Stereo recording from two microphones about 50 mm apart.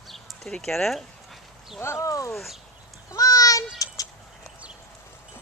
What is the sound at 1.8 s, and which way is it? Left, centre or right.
Speech, left.